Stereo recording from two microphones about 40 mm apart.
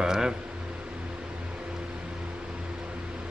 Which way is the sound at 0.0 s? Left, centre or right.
Centre.